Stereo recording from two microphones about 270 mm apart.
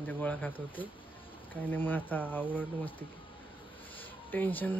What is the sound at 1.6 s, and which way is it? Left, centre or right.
Speech, centre.